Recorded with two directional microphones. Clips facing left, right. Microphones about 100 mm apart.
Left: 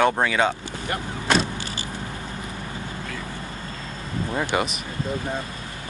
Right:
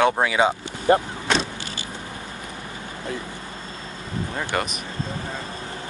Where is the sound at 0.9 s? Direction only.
30° right (ahead or behind).